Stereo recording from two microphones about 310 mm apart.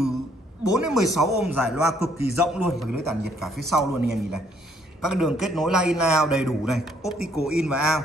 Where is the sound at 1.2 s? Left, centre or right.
Centre.